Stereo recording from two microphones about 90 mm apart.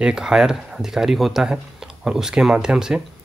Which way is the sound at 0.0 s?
10° right (ahead or behind).